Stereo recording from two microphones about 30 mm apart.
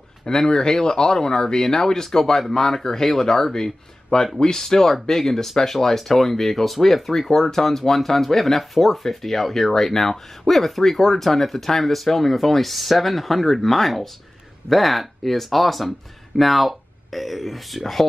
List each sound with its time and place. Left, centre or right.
0.2 s speech: left; by 7.2 s centre
7.2 s speech: centre